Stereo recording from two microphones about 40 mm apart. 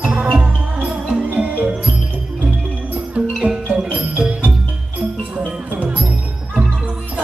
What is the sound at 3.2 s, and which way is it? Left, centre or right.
Music, right.